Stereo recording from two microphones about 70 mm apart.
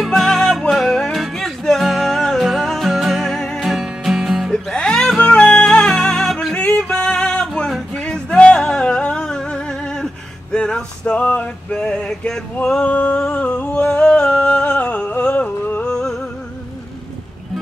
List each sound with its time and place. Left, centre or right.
0.0 s music: centre
3.6 s music: centre
4.5 s music: centre
10.5 s male singing: centre
12.6 s music: centre
13.2 s a sound: left
15.9 s music: centre